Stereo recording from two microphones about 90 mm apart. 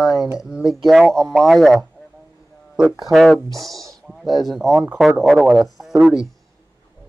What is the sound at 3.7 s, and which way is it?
Speech, 40° right (ahead or behind).